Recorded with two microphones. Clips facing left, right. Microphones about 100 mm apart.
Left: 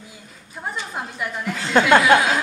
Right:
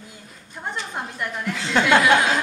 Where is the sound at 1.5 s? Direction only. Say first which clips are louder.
Left 3 dB; 45° left (ahead or behind).